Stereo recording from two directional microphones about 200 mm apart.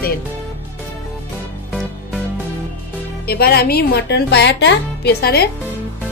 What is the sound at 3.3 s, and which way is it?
Speech, 50° left (ahead or behind).